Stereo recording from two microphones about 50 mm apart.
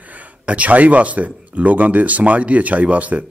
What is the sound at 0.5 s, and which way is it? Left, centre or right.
Speech, right.